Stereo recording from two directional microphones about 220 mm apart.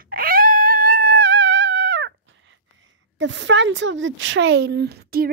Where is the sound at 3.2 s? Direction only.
55° right (ahead or behind).